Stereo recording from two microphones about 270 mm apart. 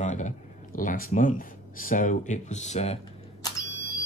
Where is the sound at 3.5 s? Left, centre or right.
Centre.